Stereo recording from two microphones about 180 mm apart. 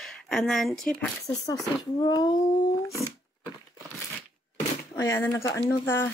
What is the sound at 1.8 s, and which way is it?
Speech, 20° left (ahead or behind).